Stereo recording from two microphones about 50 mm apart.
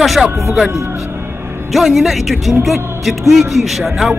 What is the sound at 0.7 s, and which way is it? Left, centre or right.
Speech, right.